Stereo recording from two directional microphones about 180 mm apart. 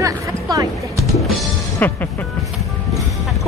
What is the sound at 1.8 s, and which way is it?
Speech, 10° left (ahead or behind).